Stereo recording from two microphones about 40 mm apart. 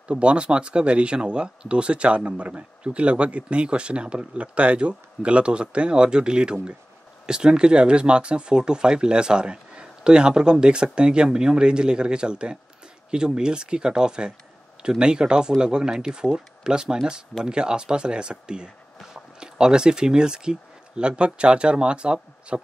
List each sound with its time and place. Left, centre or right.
0.1 s speech: right